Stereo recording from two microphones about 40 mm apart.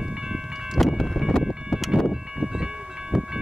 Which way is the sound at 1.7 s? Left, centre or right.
Centre.